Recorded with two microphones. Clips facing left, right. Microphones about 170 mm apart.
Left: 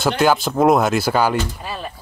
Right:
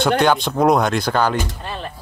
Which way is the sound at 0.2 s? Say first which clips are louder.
Left 1 dB; 5° left (ahead or behind).